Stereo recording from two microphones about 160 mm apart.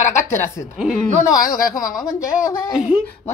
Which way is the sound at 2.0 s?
20° left (ahead or behind).